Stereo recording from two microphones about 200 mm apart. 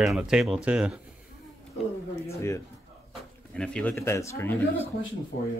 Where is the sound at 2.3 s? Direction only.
15° left (ahead or behind).